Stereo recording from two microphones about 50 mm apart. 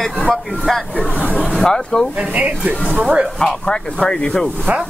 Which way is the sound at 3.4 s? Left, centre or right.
Centre.